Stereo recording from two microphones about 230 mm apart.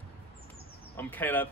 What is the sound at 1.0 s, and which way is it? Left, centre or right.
Speech, centre.